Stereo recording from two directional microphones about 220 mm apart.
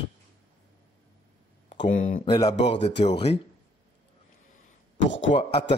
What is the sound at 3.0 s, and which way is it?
Speech, 25° left (ahead or behind).